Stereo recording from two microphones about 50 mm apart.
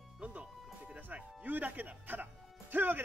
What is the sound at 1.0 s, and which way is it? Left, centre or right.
Speech, right.